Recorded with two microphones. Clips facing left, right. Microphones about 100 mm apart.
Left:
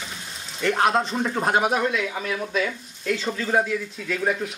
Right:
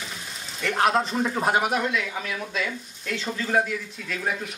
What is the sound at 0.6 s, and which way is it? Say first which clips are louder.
Speech: left 2 dB; centre (ahead or behind).